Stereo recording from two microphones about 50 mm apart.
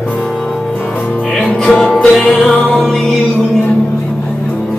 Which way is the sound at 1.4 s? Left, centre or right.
Left.